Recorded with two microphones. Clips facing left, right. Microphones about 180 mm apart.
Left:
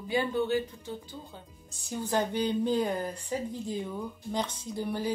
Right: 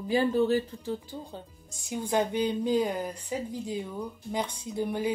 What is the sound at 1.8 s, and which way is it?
A woman's voice, 10° right (ahead or behind).